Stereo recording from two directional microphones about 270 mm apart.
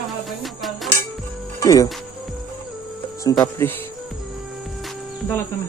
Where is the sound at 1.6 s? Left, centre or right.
Centre.